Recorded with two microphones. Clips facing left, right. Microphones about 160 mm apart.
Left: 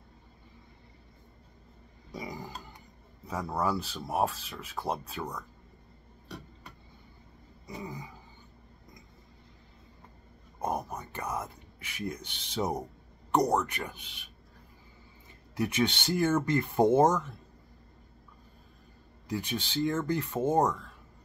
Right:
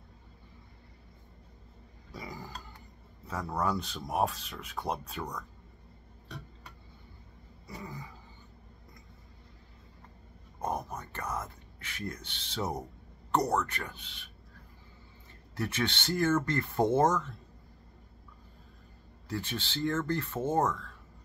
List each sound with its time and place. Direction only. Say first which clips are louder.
2.1 s a sound: left 3 dB; 15° left (ahead or behind)
3.3 s speech: left 1 dB; 10° left (ahead or behind)
6.2 s tick-tock: left 2 dB; 5° left (ahead or behind)
7.6 s speech: left 3 dB; 15° left (ahead or behind)
10.6 s speech: left 2 dB; 10° left (ahead or behind)
15.5 s speech: left 4 dB; 15° left (ahead or behind)
19.2 s speech: left 3 dB; 15° left (ahead or behind)